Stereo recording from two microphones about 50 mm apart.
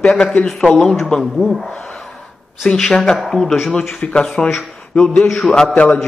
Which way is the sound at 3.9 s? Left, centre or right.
Centre.